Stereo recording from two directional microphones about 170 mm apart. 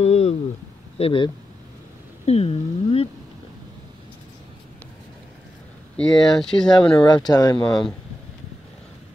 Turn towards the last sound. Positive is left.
turn(degrees=25)  # may be behind; listen again after turning